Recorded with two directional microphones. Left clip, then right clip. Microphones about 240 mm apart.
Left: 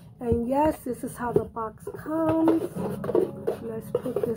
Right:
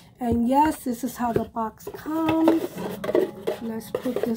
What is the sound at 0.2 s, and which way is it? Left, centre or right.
A woman's voice, right.